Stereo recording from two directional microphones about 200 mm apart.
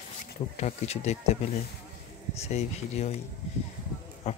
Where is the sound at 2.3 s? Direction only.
30° left (ahead or behind).